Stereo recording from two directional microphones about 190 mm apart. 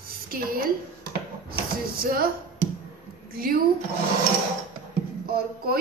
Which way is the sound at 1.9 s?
50° right (ahead or behind).